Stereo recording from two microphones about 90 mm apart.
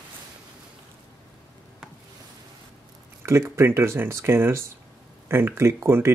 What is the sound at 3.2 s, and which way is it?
Speech, 30° right (ahead or behind).